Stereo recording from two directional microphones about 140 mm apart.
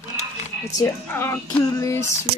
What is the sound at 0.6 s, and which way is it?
Female singing, 25° left (ahead or behind).